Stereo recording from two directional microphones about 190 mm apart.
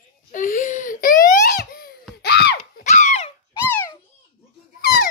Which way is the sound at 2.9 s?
40° left (ahead or behind).